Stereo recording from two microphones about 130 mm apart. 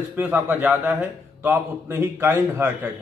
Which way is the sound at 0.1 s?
15° right (ahead or behind).